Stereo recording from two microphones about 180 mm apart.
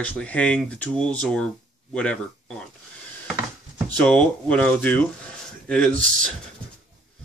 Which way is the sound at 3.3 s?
5° left (ahead or behind).